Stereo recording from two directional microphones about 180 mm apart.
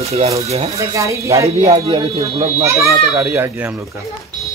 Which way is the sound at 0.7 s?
15° right (ahead or behind).